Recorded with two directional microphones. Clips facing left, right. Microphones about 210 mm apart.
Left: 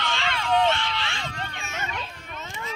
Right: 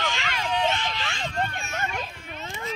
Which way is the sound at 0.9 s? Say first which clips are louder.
Right 1 dB; 45° right (ahead or behind).